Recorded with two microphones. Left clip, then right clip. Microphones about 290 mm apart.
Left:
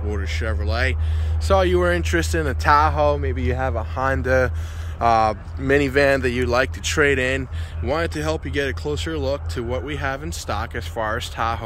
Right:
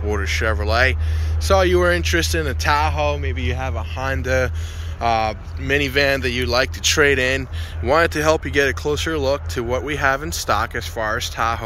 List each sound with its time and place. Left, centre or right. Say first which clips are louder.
0.1 s speech: right 8 dB; centre